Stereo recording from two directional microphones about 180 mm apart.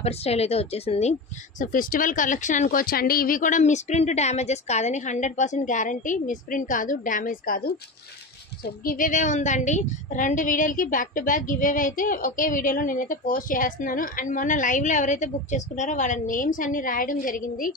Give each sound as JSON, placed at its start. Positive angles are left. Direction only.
{"t": 0.0, "sound": "a woman's voice", "side_deg": 35}
{"t": 1.6, "sound": "a woman's voice", "side_deg": 50}
{"t": 8.6, "sound": "a woman's voice", "side_deg": 50}